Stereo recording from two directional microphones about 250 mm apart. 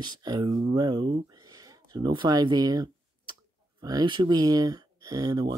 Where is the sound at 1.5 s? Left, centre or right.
Centre.